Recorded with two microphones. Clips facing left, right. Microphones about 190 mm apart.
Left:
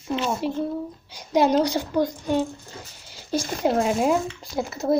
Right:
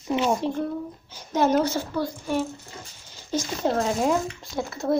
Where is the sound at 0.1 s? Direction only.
10° right (ahead or behind).